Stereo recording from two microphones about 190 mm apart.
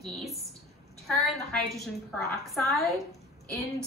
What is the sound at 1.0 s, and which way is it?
A woman's voice, centre (ahead or behind).